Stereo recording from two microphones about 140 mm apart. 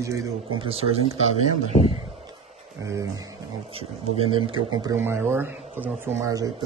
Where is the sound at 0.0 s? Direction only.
20° right (ahead or behind).